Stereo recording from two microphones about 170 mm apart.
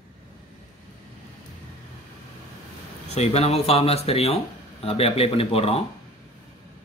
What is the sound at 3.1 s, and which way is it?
Speech, 40° left (ahead or behind).